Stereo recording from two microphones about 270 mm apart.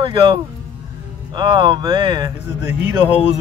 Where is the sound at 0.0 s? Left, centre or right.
Centre.